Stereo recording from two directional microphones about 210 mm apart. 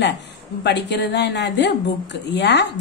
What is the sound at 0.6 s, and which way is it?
A woman's voice, 55° left (ahead or behind).